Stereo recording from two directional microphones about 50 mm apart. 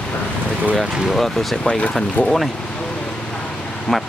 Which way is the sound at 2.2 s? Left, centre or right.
Left.